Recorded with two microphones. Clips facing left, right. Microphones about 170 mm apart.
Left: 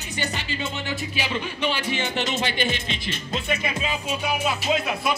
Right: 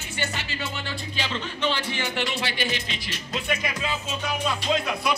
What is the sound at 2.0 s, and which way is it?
Music, 20° left (ahead or behind).